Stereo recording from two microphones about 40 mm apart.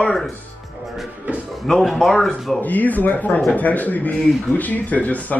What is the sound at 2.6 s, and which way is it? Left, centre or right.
Speech, left.